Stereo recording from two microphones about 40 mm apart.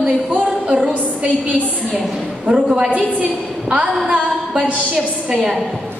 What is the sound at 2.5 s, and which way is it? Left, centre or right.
A woman's voice, right.